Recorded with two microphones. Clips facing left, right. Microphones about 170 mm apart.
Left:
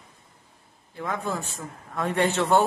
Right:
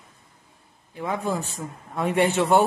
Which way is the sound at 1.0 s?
15° right (ahead or behind).